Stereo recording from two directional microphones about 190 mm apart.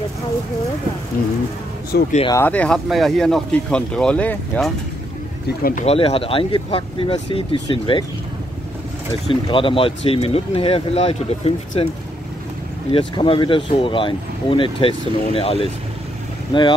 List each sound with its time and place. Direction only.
1.9 s speech: 55° left (ahead or behind)
2.2 s speech: 15° left (ahead or behind)
5.6 s speech: 50° left (ahead or behind)
5.9 s speech: 30° left (ahead or behind)
9.3 s speech: 25° left (ahead or behind)
12.9 s speech: 25° left (ahead or behind)